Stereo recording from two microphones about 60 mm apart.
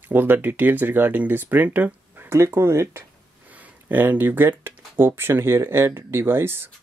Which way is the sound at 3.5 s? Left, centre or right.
Right.